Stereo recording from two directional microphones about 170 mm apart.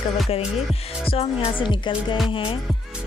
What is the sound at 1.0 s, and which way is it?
Music, 35° left (ahead or behind).